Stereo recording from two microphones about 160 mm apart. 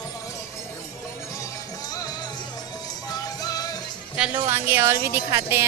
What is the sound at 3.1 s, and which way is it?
Music, 25° left (ahead or behind).